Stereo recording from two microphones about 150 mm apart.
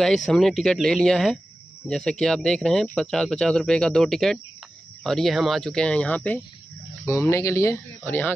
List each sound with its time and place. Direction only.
0.0 s speech: 5° left (ahead or behind)